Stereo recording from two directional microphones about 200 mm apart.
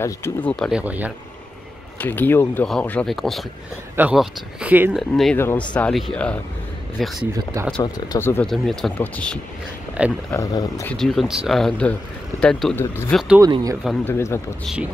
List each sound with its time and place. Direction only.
0.0 s speech: 10° left (ahead or behind); by 1.1 s 10° right (ahead or behind)
2.0 s speech: 10° left (ahead or behind)
7.8 s speech: 15° left (ahead or behind)
10.0 s speech: 5° right (ahead or behind)
10.3 s speech: 15° left (ahead or behind)
11.0 s speech: centre (ahead or behind)
13.4 s speech: 20° right (ahead or behind)
13.8 s speech: 10° left (ahead or behind)